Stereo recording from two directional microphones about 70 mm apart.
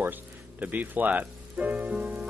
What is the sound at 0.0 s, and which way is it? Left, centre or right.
Speech, right.